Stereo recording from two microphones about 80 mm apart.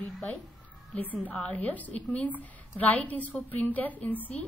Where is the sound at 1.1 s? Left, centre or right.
Centre.